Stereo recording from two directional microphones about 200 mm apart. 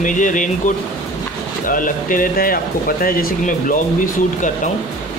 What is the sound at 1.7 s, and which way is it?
Speech, 40° left (ahead or behind).